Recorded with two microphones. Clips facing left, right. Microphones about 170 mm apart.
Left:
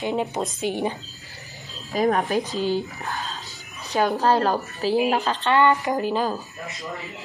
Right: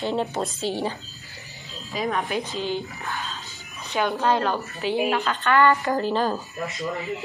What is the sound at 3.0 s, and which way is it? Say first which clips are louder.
Music: left 1 dB; 40° left (ahead or behind).